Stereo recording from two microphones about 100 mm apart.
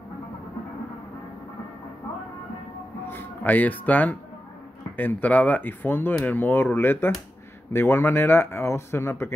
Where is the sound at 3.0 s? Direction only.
20° left (ahead or behind).